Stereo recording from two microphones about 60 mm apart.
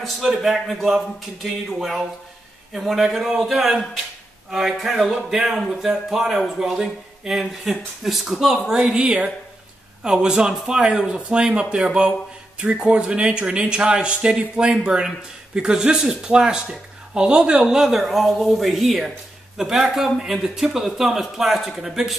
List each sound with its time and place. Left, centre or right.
0.0 s speech: centre